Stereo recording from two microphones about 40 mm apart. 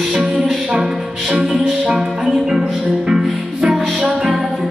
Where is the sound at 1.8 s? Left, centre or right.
Right.